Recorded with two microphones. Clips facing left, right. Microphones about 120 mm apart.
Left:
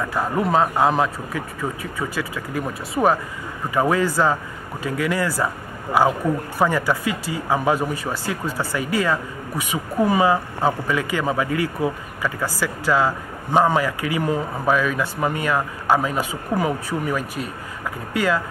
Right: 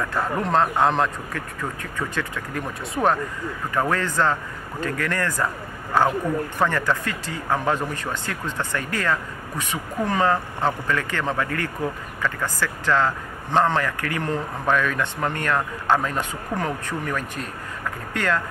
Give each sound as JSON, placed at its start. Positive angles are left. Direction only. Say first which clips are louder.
{"t": 0.0, "sound": "speech", "louder": "left 2 dB", "side_deg": 5}